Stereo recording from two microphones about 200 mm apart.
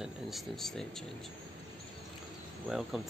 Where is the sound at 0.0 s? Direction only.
Centre (ahead or behind).